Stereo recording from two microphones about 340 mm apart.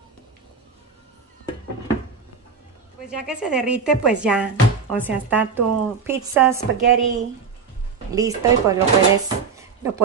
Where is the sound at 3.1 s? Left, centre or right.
Centre.